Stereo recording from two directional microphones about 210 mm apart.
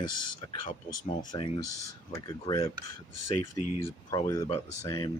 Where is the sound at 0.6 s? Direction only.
40° left (ahead or behind).